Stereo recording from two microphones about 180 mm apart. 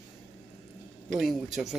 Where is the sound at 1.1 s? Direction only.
Centre (ahead or behind).